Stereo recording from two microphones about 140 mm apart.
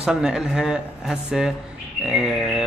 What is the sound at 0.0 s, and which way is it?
A man's voice, 5° right (ahead or behind).